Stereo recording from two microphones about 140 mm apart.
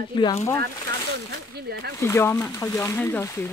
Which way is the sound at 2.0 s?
20° left (ahead or behind).